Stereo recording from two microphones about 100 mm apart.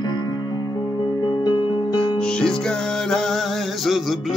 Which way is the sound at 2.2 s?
10° left (ahead or behind).